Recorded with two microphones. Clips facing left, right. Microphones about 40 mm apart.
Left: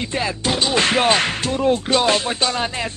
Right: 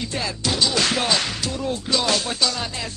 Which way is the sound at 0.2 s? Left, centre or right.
Left.